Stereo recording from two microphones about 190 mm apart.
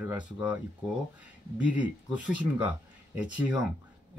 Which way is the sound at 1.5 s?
5° right (ahead or behind).